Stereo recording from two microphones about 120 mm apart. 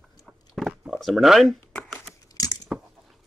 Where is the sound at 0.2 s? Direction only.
Centre (ahead or behind).